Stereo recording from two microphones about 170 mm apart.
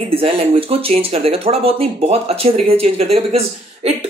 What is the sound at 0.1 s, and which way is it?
Speech, 35° right (ahead or behind).